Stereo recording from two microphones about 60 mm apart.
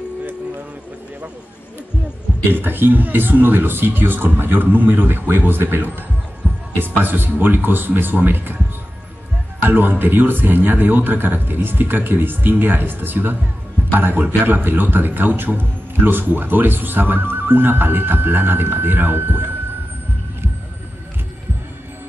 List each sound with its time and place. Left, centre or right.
2.5 s a man's voice: right
6.4 s music: right
6.8 s a man's voice: right
9.6 s a man's voice: right